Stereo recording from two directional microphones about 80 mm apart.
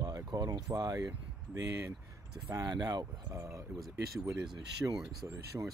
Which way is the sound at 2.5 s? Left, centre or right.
Right.